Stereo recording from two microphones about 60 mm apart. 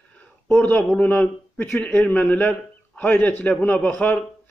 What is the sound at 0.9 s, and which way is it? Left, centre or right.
Speech, left.